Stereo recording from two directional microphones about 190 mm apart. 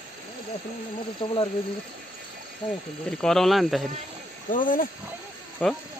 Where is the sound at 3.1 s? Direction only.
5° left (ahead or behind).